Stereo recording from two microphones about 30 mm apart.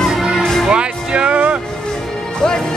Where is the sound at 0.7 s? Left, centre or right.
Right.